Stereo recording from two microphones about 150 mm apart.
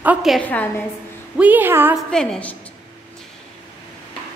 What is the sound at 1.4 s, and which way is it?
Speech, 10° right (ahead or behind).